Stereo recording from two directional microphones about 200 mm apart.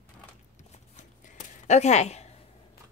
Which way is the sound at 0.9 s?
40° left (ahead or behind).